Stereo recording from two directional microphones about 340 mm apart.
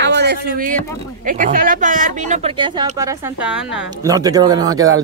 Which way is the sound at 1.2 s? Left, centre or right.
Right.